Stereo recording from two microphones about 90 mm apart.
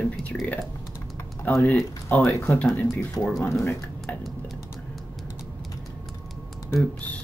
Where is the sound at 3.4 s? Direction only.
25° left (ahead or behind).